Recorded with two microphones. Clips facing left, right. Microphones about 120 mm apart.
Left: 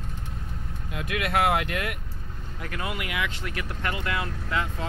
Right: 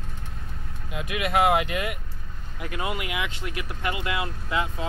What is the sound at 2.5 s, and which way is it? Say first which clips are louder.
Speech: right 3 dB; 20° right (ahead or behind).